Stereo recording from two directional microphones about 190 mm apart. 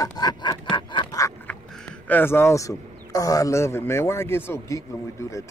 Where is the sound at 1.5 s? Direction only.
10° left (ahead or behind).